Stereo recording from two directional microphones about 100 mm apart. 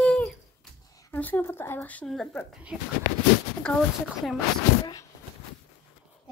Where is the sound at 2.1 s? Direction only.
5° left (ahead or behind).